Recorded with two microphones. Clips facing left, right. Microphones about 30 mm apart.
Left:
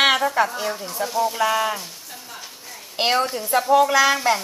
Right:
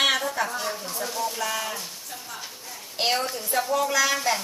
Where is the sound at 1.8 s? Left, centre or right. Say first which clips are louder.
Even; centre.